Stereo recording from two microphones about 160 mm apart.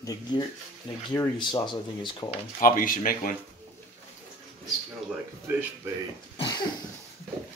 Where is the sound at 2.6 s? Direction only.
60° left (ahead or behind).